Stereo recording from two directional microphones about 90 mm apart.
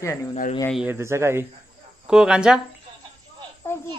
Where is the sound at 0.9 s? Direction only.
30° right (ahead or behind).